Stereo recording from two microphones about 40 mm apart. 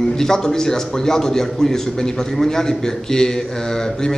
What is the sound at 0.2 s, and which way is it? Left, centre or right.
A man's voice, centre.